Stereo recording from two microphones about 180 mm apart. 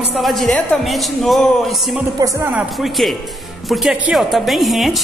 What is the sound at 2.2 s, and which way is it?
Speech, 20° right (ahead or behind).